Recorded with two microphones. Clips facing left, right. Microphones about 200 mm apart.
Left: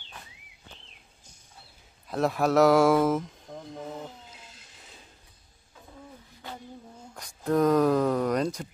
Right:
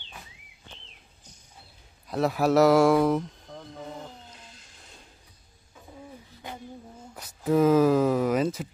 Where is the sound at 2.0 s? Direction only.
Centre (ahead or behind).